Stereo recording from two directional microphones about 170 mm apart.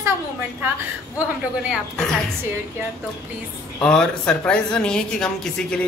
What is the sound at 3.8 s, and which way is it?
Speech, 5° left (ahead or behind).